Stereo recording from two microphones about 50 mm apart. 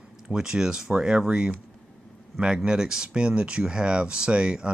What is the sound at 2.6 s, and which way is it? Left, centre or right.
Speech, centre.